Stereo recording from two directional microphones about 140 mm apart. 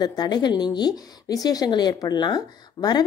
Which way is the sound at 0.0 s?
30° left (ahead or behind).